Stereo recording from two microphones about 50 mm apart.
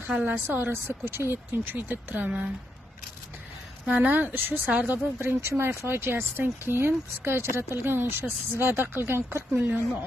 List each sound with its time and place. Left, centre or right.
0.1 s speech: right
0.5 s speech: right
2.2 s speech: right
3.8 s speech: right
5.2 s speech: right
9.6 s speech: right